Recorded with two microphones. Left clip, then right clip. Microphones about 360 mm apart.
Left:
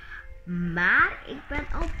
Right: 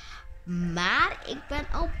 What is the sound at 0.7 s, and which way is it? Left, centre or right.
Speech, centre.